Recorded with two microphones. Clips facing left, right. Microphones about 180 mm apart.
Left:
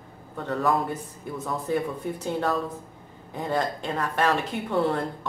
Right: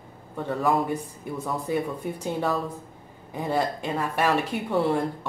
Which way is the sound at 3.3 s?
10° right (ahead or behind).